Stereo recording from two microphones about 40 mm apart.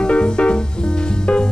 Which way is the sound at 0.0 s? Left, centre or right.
Left.